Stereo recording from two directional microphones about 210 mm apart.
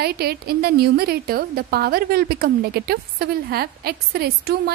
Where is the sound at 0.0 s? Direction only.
50° right (ahead or behind).